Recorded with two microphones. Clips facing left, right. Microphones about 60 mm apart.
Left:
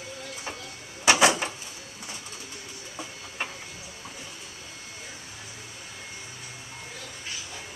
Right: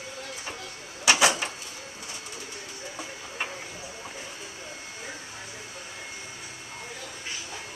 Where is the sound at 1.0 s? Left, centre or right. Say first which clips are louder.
Left 2 dB; left.